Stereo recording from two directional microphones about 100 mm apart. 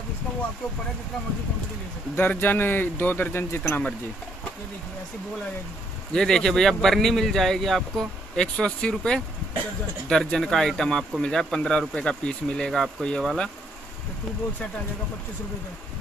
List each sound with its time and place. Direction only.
2.1 s speech: 15° left (ahead or behind)
6.1 s speech: 5° left (ahead or behind)